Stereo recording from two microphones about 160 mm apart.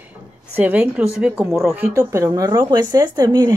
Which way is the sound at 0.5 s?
10° right (ahead or behind).